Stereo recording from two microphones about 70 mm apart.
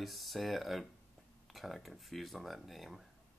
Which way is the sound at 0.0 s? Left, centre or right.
Centre.